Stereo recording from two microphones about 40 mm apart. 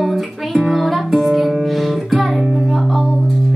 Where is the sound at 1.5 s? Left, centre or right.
Centre.